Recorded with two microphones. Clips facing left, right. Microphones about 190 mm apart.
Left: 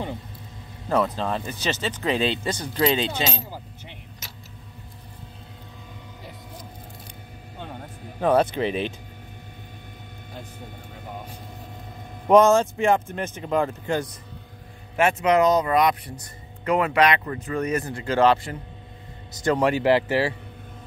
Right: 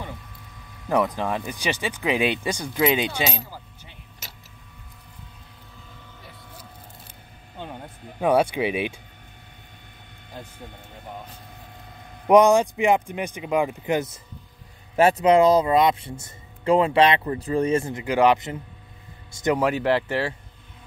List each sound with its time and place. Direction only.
0.8 s speech: 15° right (ahead or behind)
8.2 s speech: 10° right (ahead or behind)
12.3 s speech: 15° right (ahead or behind)
15.0 s speech: 35° right (ahead or behind)
18.0 s speech: 15° right (ahead or behind)
19.5 s speech: centre (ahead or behind)